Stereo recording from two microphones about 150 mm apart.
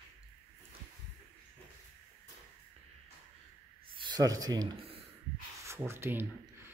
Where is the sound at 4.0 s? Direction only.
30° right (ahead or behind).